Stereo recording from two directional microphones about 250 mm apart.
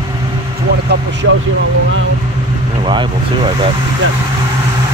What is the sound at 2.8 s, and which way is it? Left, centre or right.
Speech, centre.